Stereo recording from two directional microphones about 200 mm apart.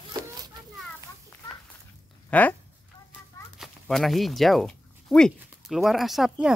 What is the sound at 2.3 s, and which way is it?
Speech, 5° left (ahead or behind).